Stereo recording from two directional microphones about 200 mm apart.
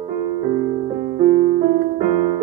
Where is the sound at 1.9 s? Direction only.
35° right (ahead or behind).